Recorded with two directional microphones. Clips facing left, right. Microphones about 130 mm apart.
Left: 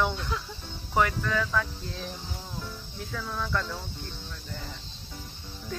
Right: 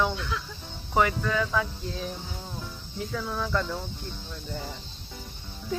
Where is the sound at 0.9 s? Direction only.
5° right (ahead or behind).